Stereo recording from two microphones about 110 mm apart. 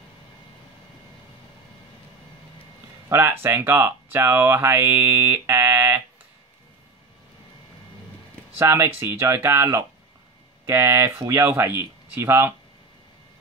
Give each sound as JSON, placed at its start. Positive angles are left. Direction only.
{"t": 3.1, "sound": "speech", "side_deg": -20}
{"t": 8.5, "sound": "speech", "side_deg": -20}